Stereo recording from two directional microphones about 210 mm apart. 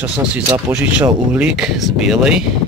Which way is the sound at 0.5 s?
15° right (ahead or behind).